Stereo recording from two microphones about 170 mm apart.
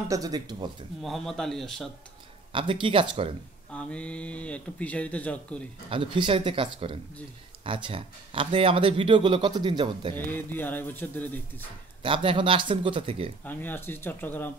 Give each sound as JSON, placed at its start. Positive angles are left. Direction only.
{"t": 0.1, "sound": "speech", "side_deg": -20}
{"t": 1.0, "sound": "speech", "side_deg": 0}
{"t": 2.5, "sound": "a man's voice", "side_deg": -30}
{"t": 3.7, "sound": "speech", "side_deg": 5}
{"t": 5.9, "sound": "a man's voice", "side_deg": -30}
{"t": 10.1, "sound": "speech", "side_deg": 10}
{"t": 12.0, "sound": "a man's voice", "side_deg": -30}
{"t": 13.4, "sound": "speech", "side_deg": 10}